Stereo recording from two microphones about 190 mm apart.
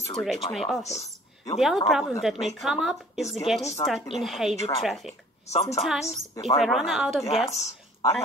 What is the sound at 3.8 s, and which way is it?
Speech, 20° left (ahead or behind).